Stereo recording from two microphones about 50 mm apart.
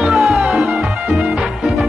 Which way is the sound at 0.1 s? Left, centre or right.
Centre.